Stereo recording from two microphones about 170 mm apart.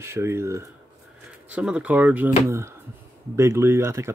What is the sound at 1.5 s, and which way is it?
Speech, 5° right (ahead or behind).